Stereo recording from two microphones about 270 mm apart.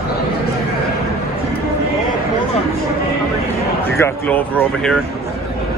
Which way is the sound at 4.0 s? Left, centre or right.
Centre.